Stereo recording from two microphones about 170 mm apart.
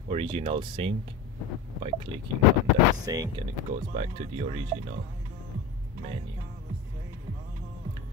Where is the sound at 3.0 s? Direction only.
20° right (ahead or behind).